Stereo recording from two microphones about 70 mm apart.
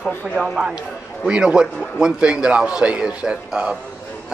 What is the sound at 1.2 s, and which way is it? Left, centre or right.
A man's voice, centre.